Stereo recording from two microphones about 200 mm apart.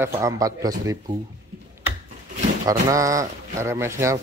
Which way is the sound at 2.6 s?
15° right (ahead or behind).